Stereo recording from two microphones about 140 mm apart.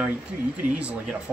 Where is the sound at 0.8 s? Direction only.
10° right (ahead or behind).